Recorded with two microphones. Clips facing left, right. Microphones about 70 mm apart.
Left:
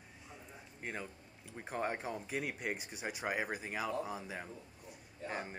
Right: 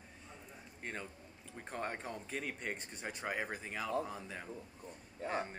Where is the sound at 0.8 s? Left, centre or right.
Centre.